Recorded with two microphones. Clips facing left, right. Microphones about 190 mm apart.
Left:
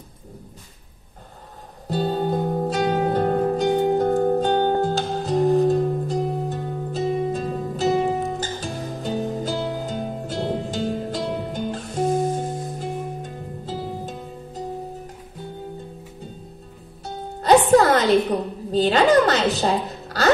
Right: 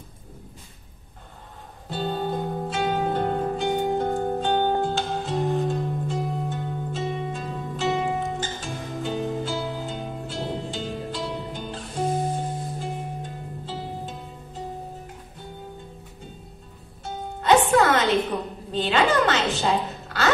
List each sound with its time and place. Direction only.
1.9 s music: 40° left (ahead or behind)
17.0 s music: 35° left (ahead or behind)
18.3 s a sound: 40° left (ahead or behind)